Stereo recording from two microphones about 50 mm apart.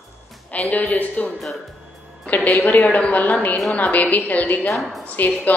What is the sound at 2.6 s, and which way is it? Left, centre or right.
A woman's voice, left.